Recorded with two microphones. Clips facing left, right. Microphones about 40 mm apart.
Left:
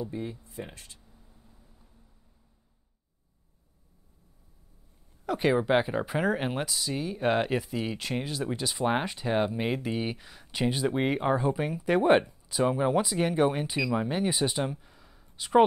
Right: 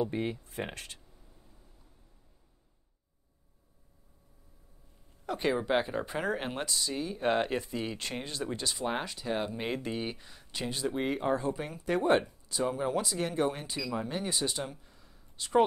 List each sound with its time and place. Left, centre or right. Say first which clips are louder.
0.0 s speech: right 3 dB; right
1.1 s a sound: left 1 dB; centre
5.2 s speech: left 5 dB; centre
8.7 s speech: left 6 dB; left
9.6 s speech: left 4 dB; centre
10.6 s speech: left 6 dB; centre
11.3 s speech: left 5 dB; centre
12.3 s a sound: left 5 dB; centre
12.6 s speech: left 5 dB; left
13.7 s speech: left 6 dB; left
14.0 s speech: left 5 dB; centre
15.0 s a sound: left 2 dB; centre